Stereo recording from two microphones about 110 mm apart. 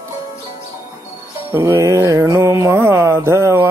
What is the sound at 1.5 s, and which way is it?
Mantra, 25° right (ahead or behind).